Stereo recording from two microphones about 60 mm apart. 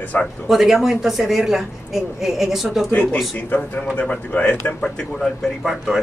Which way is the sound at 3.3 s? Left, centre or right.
Left.